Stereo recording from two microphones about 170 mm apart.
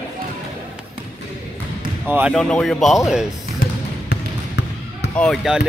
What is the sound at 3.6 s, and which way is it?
Basketball bounce, 60° left (ahead or behind).